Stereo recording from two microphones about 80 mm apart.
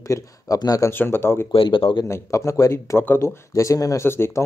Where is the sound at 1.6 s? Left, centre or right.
Left.